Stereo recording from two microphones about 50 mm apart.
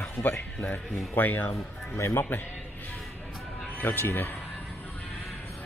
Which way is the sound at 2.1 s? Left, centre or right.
Left.